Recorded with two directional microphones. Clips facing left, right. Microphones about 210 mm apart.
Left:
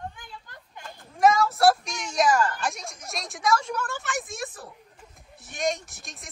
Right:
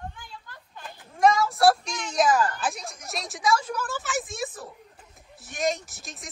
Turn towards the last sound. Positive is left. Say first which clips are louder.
# right 2 dB
turn(degrees=0)  # may be behind; listen again after turning